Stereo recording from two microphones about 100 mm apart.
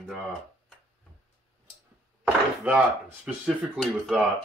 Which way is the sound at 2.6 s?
15° right (ahead or behind).